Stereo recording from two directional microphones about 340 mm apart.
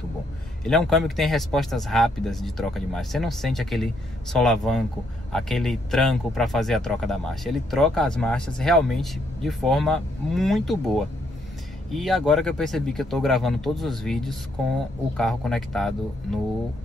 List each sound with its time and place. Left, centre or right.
0.7 s speech: centre